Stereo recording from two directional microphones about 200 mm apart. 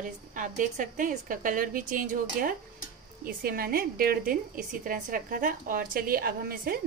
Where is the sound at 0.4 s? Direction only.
40° right (ahead or behind).